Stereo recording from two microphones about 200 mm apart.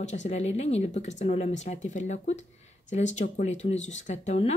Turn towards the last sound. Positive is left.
turn(degrees=35)  # may be behind; listen again after turning